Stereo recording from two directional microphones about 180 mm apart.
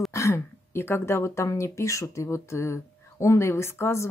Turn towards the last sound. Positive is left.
turn(degrees=15)  # may be behind; listen again after turning